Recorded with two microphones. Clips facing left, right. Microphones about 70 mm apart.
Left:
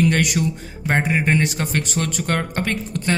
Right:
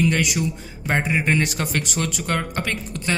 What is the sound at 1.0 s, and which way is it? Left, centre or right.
Speech, left.